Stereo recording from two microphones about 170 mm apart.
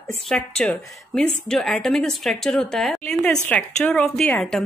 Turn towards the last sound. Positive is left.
turn(degrees=5)  # may be behind; listen again after turning